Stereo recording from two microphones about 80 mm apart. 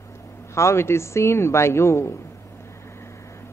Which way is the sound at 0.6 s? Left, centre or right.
Left.